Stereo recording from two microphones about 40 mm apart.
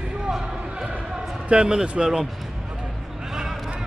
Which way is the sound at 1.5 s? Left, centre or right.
Right.